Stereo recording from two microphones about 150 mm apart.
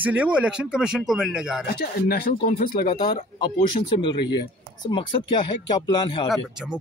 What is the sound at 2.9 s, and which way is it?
Speech, 30° left (ahead or behind).